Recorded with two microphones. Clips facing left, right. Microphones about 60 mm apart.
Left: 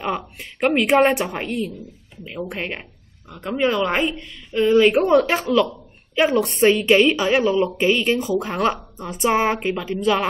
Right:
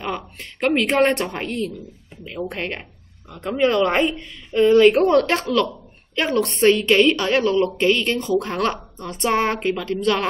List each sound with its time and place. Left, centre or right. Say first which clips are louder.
0.0 s a woman's voice: left 2 dB; centre